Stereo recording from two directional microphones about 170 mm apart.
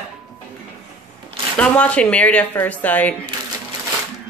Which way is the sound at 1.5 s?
5° left (ahead or behind).